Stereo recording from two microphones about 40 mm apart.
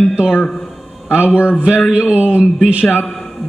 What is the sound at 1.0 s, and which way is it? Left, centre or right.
A man's voice, right.